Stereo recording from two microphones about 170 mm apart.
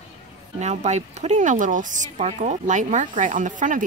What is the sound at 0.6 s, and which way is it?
Speech, 40° right (ahead or behind).